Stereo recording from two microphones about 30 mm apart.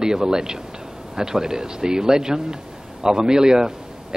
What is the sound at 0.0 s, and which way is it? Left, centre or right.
Speech, right.